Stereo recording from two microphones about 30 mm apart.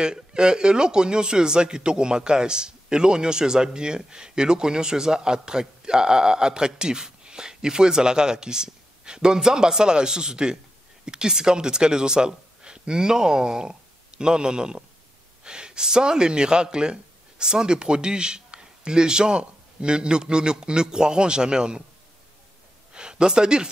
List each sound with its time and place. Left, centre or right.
0.0 s a man's voice: right
22.9 s speech: right